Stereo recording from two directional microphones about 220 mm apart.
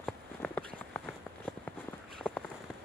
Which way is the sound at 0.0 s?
5° left (ahead or behind).